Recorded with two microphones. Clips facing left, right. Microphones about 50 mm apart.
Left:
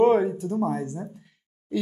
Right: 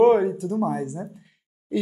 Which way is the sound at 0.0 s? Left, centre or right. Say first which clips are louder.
Right 2 dB; centre.